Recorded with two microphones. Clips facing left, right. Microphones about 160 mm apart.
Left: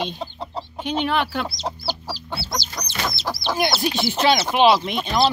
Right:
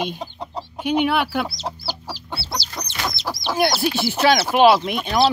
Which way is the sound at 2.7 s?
20° right (ahead or behind).